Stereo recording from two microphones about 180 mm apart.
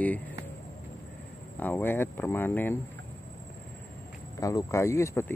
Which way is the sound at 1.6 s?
10° left (ahead or behind).